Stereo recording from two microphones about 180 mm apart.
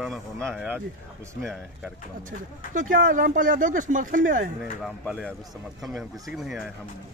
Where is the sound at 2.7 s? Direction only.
50° right (ahead or behind).